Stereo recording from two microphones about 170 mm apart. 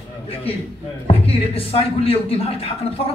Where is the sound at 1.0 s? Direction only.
35° left (ahead or behind).